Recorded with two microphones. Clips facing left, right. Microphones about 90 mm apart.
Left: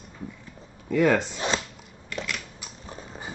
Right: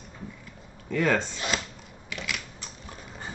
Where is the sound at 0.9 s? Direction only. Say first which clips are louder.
Left 4 dB; 15° left (ahead or behind).